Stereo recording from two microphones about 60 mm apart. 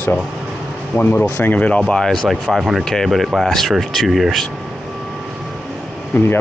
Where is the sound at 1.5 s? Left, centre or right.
Left.